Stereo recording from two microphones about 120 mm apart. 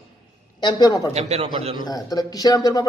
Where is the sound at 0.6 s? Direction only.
35° left (ahead or behind).